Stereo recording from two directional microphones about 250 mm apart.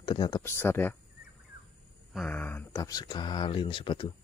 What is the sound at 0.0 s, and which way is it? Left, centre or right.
Speech, centre.